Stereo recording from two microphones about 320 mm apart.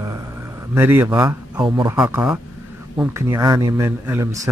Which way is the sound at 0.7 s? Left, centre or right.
Centre.